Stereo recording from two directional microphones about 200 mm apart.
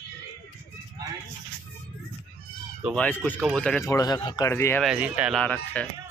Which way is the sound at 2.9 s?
10° left (ahead or behind).